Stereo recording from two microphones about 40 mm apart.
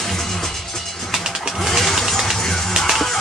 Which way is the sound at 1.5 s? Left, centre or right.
Centre.